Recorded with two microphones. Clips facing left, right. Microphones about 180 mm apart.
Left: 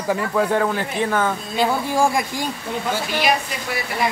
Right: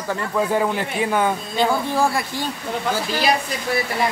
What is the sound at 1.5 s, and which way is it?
Speech, 10° left (ahead or behind).